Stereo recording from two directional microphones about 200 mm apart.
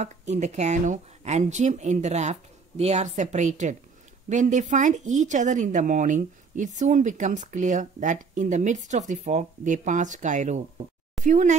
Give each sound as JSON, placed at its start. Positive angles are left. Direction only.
{"t": 0.0, "sound": "speech", "side_deg": -35}